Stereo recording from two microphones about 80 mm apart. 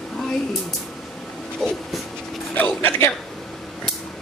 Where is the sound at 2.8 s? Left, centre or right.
Left.